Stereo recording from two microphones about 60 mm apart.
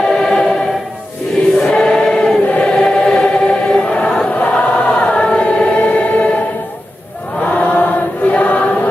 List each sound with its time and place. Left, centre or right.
0.1 s choir: centre
1.6 s choir: centre
2.4 s choir: left
2.7 s choir: centre
4.3 s choir: left
7.5 s choir: left